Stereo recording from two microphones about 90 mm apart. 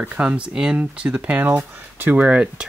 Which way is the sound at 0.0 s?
15° right (ahead or behind).